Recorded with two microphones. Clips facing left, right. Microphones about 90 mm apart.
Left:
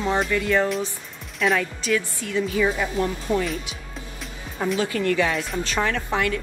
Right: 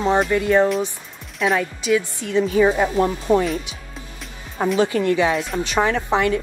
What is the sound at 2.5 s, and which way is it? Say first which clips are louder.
Speech: right 7 dB; 40° right (ahead or behind).